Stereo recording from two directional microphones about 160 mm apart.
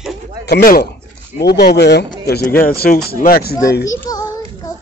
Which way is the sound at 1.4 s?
85° left.